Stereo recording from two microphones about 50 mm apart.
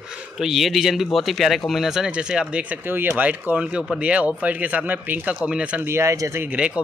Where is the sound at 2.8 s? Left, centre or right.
Right.